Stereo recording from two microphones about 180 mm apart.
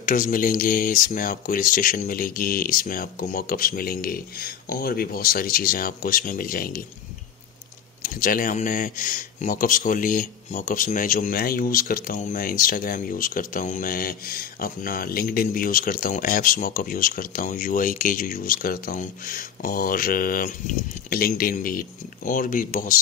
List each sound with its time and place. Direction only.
0.0 s speech: 50° left (ahead or behind)
8.0 s speech: 50° left (ahead or behind)